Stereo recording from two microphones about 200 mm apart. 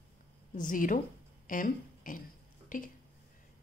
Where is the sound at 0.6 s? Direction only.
40° left (ahead or behind).